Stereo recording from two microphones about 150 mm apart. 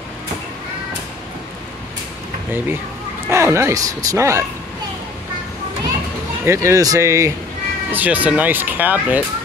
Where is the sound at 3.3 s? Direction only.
20° right (ahead or behind).